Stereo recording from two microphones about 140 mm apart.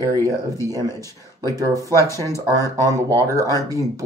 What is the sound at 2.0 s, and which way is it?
Speech, 20° left (ahead or behind).